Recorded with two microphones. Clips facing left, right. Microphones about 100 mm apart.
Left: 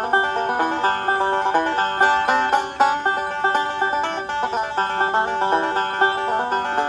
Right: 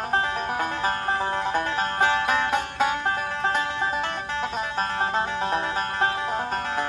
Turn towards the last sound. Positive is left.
turn(degrees=60)  # may be behind; listen again after turning